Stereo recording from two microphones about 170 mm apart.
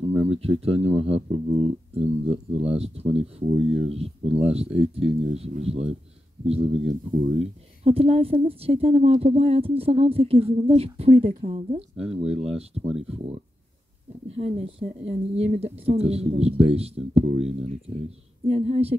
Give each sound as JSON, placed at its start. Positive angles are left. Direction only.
{"t": 0.3, "sound": "speech", "side_deg": -35}
{"t": 14.3, "sound": "speech", "side_deg": -35}